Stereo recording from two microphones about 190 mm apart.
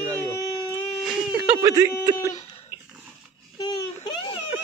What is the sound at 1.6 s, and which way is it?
Speech, 20° right (ahead or behind).